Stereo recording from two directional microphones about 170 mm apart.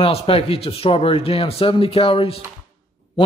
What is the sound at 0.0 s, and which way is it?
Speech, 35° left (ahead or behind).